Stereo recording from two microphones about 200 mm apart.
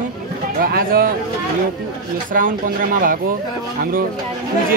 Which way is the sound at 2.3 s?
45° right (ahead or behind).